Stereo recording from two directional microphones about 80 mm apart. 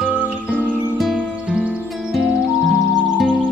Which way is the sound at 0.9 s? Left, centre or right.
Centre.